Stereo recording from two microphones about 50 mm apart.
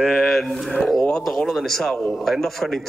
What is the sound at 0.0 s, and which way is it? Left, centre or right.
A man's voice, centre.